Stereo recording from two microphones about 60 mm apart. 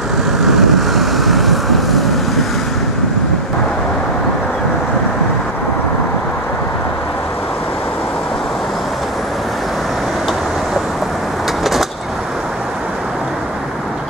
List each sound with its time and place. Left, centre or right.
0.6 s vehicle: centre